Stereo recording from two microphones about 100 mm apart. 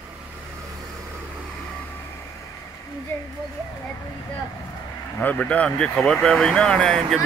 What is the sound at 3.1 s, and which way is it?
Speech, 20° left (ahead or behind).